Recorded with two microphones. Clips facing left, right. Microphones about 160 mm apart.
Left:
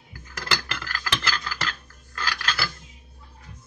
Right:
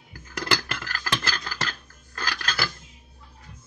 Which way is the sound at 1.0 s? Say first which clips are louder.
Even; 40° right (ahead or behind).